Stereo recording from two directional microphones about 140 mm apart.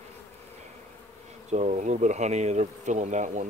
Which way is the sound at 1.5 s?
55° right (ahead or behind).